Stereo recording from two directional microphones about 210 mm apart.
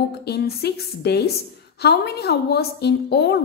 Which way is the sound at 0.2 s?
50° left (ahead or behind).